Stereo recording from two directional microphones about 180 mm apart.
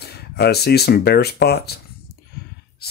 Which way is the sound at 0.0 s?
65° left (ahead or behind).